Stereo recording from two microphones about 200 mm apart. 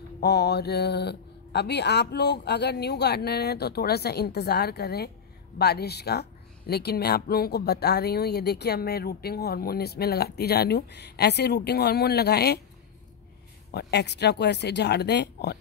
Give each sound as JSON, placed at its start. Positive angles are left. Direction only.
{"t": 0.2, "sound": "speech", "side_deg": 55}
{"t": 13.7, "sound": "speech", "side_deg": 55}